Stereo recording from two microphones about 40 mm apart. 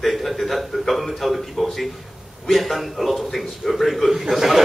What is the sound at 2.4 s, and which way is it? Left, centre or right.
A man's voice, centre.